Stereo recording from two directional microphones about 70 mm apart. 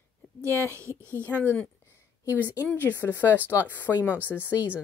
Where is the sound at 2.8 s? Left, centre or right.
Left.